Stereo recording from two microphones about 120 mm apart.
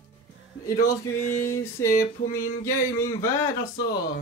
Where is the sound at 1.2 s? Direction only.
20° left (ahead or behind).